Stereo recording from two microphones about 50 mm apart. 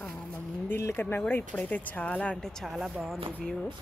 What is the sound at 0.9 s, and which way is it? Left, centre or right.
Speech, left.